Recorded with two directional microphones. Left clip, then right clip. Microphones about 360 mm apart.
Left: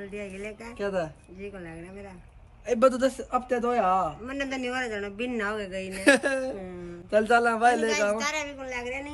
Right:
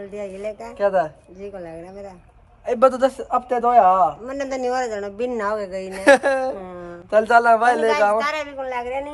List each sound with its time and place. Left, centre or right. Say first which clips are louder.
0.1 s a man's voice: right 8 dB; centre
0.7 s a man's voice: right 11 dB; centre
2.6 s a man's voice: right 6 dB; centre
4.3 s a man's voice: right 8 dB; centre
5.9 s a man's voice: right 8 dB; centre